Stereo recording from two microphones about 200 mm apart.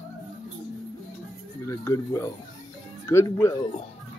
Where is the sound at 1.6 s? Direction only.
15° left (ahead or behind).